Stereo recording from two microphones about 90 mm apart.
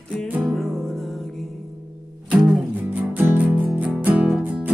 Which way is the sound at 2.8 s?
25° right (ahead or behind).